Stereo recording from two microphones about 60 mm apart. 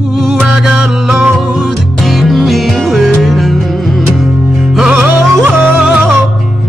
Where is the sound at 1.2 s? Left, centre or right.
Right.